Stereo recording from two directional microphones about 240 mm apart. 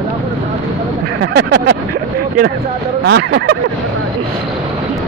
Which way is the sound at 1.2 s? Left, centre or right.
Right.